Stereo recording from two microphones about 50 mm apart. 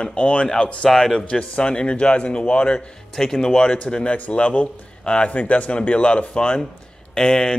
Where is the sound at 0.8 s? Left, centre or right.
Centre.